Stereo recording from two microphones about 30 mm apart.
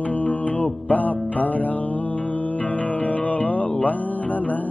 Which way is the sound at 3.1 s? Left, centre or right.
Left.